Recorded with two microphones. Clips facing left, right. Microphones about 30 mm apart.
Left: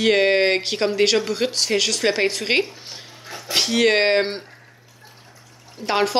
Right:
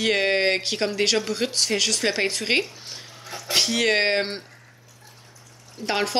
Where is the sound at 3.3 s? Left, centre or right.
Left.